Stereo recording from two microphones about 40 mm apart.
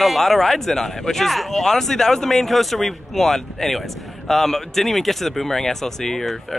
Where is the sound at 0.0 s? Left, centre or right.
Centre.